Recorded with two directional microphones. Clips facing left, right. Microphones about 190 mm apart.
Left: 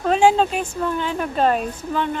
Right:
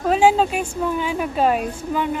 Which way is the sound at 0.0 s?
5° right (ahead or behind).